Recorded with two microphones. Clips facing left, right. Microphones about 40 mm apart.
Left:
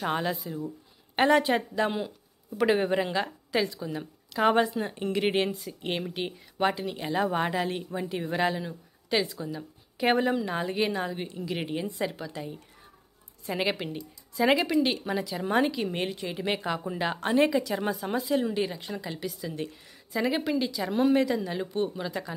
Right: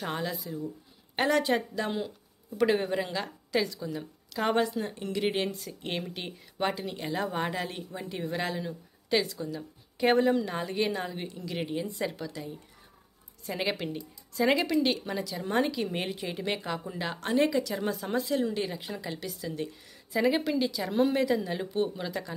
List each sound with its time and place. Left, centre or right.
0.2 s a woman's voice: left
5.0 s a woman's voice: left
5.6 s speech: centre
12.3 s a woman's voice: left
13.5 s speech: centre
16.4 s a woman's voice: centre
17.9 s speech: centre
18.3 s speech: centre
18.6 s speech: centre
20.1 s speech: centre